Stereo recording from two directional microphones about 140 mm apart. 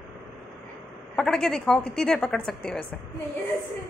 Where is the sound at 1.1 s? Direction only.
5° left (ahead or behind).